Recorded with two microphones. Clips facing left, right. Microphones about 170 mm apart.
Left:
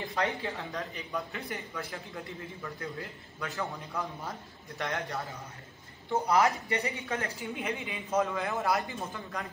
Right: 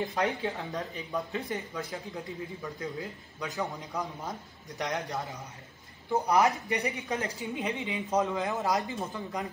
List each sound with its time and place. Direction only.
0.0 s a woman's voice: 20° right (ahead or behind)